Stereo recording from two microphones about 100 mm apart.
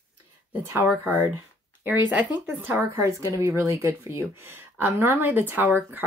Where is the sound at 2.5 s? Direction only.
20° right (ahead or behind).